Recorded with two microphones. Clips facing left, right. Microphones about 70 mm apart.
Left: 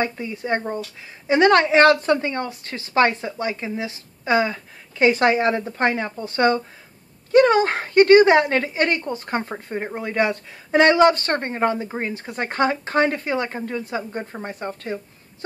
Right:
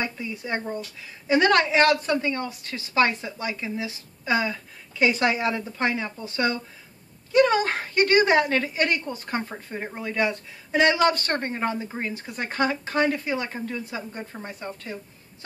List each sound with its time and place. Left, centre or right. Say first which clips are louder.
0.0 s a woman's voice: left 5 dB; left
7.3 s a woman's voice: left 5 dB; left
10.2 s speech: left 3 dB; left
11.0 s a woman's voice: left 6 dB; left